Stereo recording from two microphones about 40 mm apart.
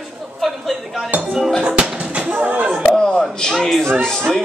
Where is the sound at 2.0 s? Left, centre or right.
Right.